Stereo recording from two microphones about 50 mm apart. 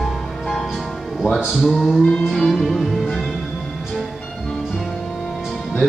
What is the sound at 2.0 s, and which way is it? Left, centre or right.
Music, centre.